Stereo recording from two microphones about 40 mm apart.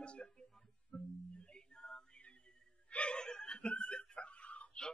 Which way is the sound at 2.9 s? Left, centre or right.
Left.